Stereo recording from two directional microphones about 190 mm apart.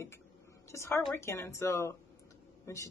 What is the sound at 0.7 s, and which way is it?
A woman's voice, 15° left (ahead or behind).